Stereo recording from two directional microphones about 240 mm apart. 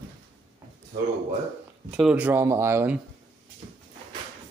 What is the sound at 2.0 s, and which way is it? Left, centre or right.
A man's voice, centre.